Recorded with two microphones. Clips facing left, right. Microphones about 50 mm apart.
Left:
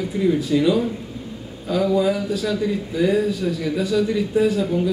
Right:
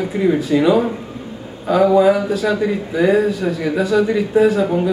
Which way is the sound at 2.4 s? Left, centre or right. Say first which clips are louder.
Right 5 dB; right.